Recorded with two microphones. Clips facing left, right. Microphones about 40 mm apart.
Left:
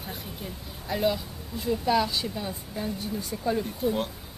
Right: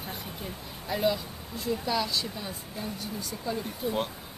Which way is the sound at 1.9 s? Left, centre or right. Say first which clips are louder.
Left 7 dB; centre.